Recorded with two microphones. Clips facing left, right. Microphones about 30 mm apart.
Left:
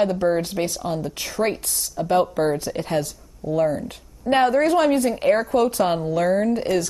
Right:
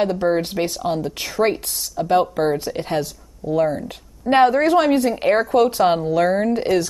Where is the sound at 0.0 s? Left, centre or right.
Right.